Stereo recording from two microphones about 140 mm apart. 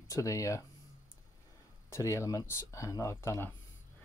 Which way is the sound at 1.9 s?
20° left (ahead or behind).